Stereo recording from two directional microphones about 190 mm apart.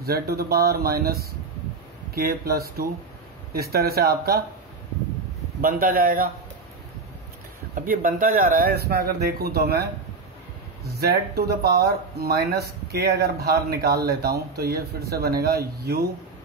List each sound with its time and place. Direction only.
0.0 s speech: 55° right (ahead or behind)
5.6 s speech: 45° right (ahead or behind)
7.7 s speech: 45° right (ahead or behind)